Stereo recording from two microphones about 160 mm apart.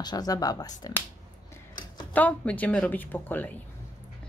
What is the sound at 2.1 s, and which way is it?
A woman's voice, 10° left (ahead or behind).